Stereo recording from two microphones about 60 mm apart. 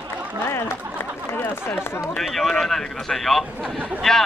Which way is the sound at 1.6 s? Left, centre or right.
Left.